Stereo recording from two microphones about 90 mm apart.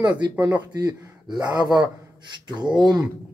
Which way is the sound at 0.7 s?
45° right (ahead or behind).